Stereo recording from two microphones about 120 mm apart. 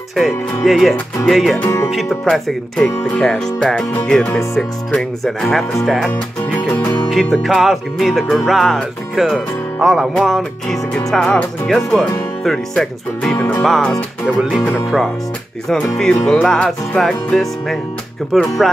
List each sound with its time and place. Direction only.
0.1 s music: centre (ahead or behind)
1.6 s music: 25° left (ahead or behind)
1.9 s music: centre (ahead or behind)
15.7 s music: 5° left (ahead or behind)